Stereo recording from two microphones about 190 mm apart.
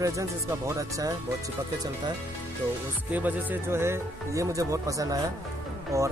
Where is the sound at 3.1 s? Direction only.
10° right (ahead or behind).